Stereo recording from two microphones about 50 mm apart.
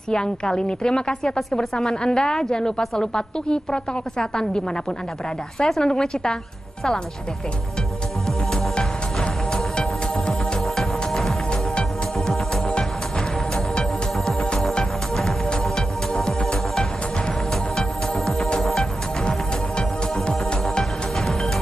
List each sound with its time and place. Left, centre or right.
0.1 s a woman's voice: centre
5.7 s a woman's voice: centre
8.7 s music: centre
10.8 s music: centre
12.3 s music: centre